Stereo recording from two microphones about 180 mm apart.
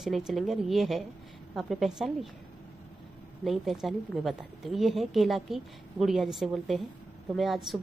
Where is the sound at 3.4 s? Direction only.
Centre (ahead or behind).